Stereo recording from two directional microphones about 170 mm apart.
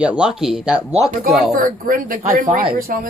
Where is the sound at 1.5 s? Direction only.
55° right (ahead or behind).